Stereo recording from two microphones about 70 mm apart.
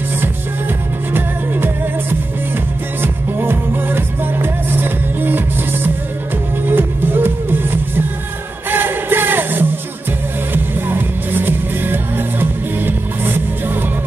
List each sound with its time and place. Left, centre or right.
1.1 s music: right